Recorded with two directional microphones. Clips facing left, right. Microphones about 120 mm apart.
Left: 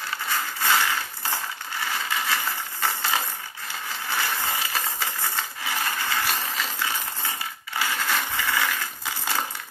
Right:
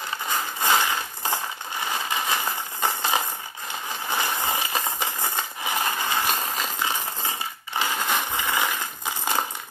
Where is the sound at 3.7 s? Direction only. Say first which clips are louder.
Right 2 dB; 20° right (ahead or behind).